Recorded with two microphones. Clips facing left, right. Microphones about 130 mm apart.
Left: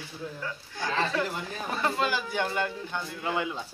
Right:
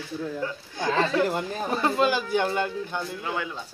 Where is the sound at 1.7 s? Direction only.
20° right (ahead or behind).